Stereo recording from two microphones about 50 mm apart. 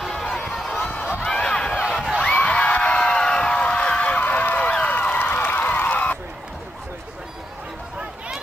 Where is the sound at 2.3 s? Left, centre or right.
Left.